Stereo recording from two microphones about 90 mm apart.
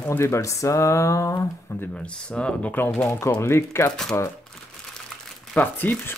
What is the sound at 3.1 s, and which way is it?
Speech, 30° left (ahead or behind).